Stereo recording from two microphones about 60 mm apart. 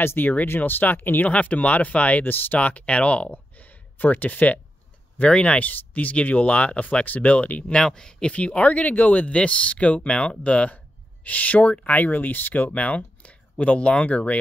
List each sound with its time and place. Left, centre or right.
0.0 s speech: left
7.7 s speech: centre